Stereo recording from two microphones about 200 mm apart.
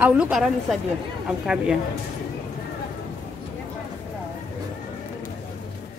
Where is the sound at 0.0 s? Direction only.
5° right (ahead or behind).